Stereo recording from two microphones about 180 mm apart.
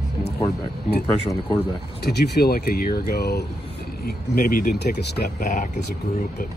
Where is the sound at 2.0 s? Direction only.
65° left (ahead or behind).